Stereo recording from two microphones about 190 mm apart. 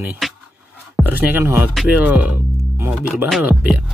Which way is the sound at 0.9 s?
10° right (ahead or behind).